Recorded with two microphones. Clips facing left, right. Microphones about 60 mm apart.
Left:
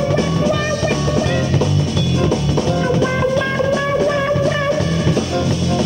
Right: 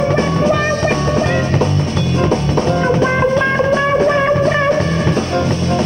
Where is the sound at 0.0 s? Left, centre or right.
Right.